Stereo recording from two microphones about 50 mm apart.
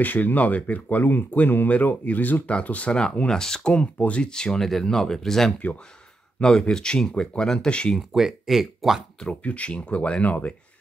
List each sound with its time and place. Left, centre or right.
0.0 s speech: left
2.9 s speech: centre
3.7 s speech: left
7.9 s speech: centre
9.3 s speech: left